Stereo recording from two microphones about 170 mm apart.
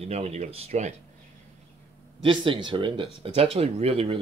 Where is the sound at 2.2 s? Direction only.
30° right (ahead or behind).